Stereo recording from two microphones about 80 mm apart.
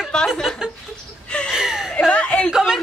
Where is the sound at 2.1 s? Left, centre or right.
Centre.